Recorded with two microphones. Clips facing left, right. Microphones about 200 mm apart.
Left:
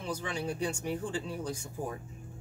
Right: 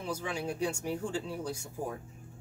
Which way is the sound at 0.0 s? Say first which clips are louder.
Even; 10° right (ahead or behind).